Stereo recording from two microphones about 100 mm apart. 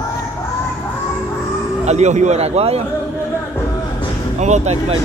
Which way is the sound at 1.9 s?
90° right.